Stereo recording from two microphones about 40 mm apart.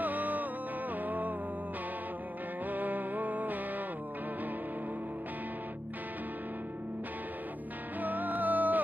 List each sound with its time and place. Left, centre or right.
0.0 s music: right
2.7 s music: right
8.0 s music: right